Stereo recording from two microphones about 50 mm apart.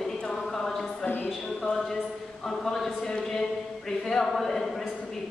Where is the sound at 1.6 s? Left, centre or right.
Centre.